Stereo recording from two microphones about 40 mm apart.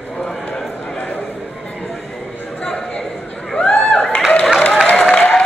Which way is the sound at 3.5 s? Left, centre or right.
Left.